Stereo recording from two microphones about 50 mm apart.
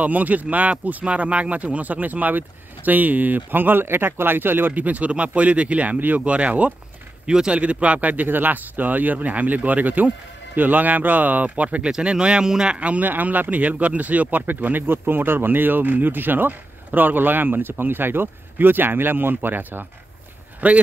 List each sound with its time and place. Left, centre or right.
0.0 s speech: right
20.6 s speech: right